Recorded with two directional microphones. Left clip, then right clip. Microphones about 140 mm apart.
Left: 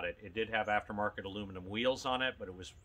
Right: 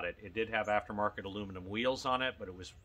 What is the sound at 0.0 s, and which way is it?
Speech, 30° right (ahead or behind).